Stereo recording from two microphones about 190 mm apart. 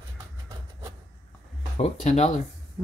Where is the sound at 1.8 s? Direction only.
35° left (ahead or behind).